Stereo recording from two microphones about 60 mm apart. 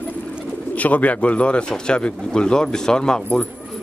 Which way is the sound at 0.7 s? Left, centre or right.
Left.